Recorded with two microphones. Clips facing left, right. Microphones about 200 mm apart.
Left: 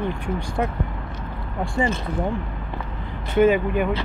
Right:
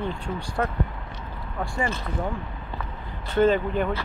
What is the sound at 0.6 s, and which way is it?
Speech, 15° left (ahead or behind).